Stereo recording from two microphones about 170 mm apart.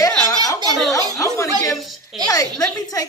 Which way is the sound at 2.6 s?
20° left (ahead or behind).